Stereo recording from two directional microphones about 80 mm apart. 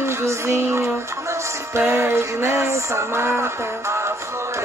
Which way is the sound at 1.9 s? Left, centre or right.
Right.